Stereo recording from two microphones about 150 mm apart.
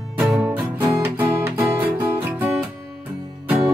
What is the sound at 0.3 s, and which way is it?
Music, 10° right (ahead or behind).